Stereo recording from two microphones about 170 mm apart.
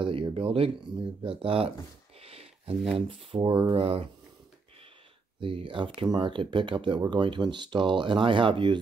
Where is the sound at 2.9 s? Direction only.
30° right (ahead or behind).